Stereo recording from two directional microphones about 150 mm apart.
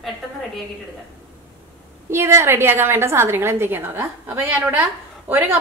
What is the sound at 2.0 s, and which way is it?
A woman's voice, 15° right (ahead or behind).